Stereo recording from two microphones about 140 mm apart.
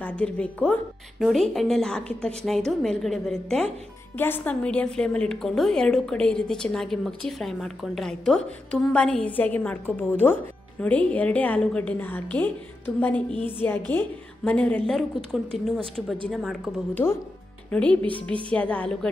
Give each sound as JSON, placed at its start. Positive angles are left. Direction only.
{"t": 0.0, "sound": "a woman's voice", "side_deg": 10}
{"t": 16.9, "sound": "a woman's voice", "side_deg": 15}